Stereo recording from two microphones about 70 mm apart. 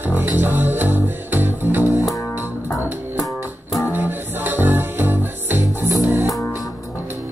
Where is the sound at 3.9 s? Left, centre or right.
Right.